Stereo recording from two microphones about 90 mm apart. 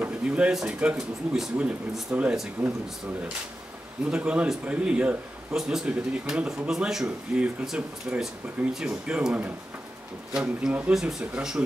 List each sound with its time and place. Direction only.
0.0 s speech: 10° right (ahead or behind)
4.0 s speech: 10° right (ahead or behind)
8.1 s speech: 15° right (ahead or behind)